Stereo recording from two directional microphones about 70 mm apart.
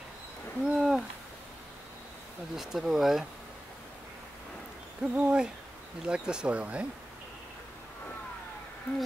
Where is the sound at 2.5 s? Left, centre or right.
Centre.